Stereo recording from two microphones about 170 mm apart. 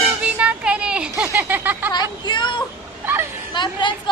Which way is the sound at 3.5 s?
25° left (ahead or behind).